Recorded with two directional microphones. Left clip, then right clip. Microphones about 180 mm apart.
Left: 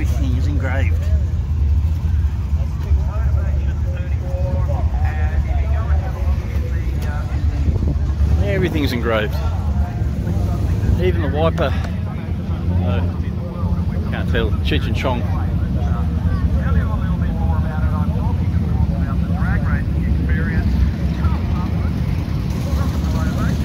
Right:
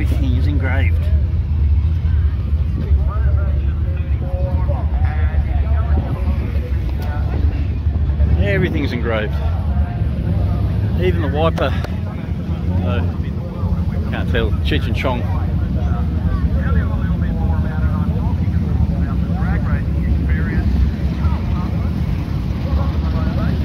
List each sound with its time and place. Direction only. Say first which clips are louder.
0.2 s vehicle: right 2 dB; 5° right (ahead or behind)
8.6 s speech: left 1 dB; 25° left (ahead or behind)
11.0 s speech: right 1 dB; centre (ahead or behind)
14.3 s speech: right 1 dB; centre (ahead or behind)
16.6 s vehicle: right 1 dB; 50° left (ahead or behind)
19.0 s vehicle: even; 45° left (ahead or behind)
23.1 s vehicle: even; 60° left (ahead or behind)